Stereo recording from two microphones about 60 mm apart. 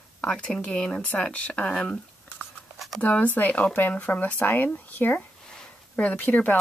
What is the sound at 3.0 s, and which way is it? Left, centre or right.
Speech, left.